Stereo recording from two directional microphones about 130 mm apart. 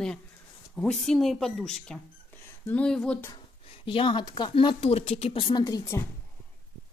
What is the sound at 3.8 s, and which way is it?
Speech, 40° left (ahead or behind).